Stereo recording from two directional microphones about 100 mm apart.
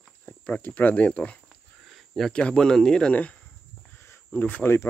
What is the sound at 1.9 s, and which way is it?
Speech, centre (ahead or behind).